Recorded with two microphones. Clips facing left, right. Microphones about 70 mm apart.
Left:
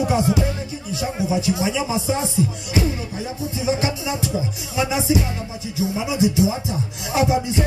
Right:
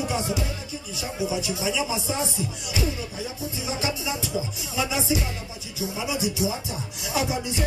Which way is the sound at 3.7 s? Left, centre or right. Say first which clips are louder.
Left 5 dB; left.